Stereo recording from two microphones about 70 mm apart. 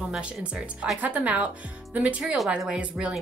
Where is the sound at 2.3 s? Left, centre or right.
Centre.